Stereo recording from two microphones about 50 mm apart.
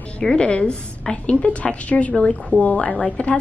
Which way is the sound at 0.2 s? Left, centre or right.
Centre.